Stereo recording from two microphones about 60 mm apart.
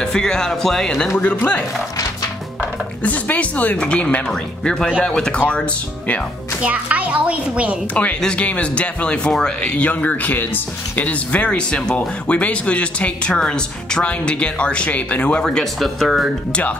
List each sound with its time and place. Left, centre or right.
0.0 s speech: centre
1.2 s speech: left
3.0 s speech: left
6.6 s a woman's voice: right
7.9 s speech: left
15.4 s speech: centre